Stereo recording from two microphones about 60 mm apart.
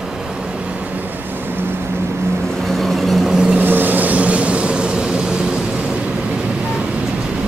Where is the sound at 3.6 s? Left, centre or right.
Right; by 5.2 s centre.